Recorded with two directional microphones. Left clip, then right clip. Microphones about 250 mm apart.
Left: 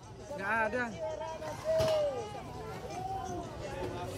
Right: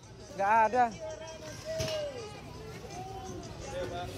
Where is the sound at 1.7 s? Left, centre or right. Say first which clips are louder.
Left 5 dB; centre.